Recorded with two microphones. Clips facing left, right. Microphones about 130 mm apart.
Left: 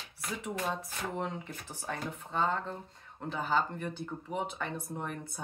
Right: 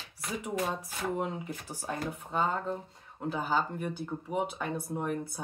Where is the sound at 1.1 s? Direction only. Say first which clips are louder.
Right 3 dB; 10° right (ahead or behind).